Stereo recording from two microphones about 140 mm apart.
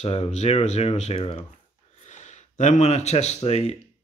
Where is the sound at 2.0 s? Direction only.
55° left (ahead or behind).